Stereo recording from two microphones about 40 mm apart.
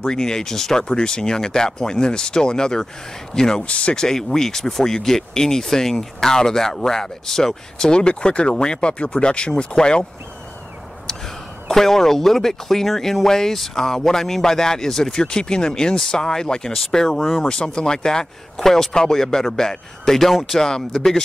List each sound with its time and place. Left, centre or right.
0.0 s speech: centre
3.6 s speech: left
3.9 s speech: centre
11.6 s speech: centre
17.2 s speech: centre
17.7 s speech: centre